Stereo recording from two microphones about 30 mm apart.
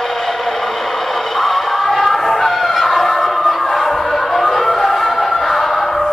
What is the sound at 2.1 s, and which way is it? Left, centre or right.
Fowl, centre.